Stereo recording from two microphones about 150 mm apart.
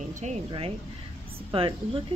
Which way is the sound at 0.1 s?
50° right (ahead or behind).